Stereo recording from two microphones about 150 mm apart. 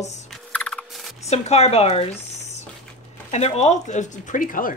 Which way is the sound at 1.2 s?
45° left (ahead or behind).